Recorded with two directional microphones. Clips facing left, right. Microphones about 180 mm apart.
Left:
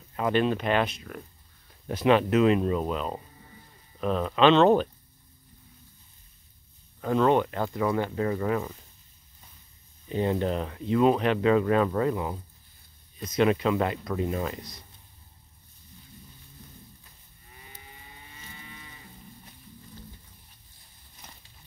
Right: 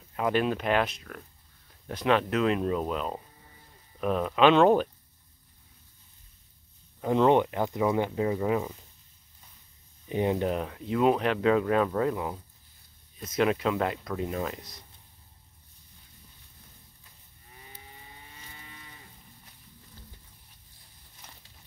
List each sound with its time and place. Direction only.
0.1 s speech: 5° right (ahead or behind)
7.0 s speech: 20° right (ahead or behind)
10.0 s speech: 15° right (ahead or behind)
21.2 s a sound: 15° left (ahead or behind)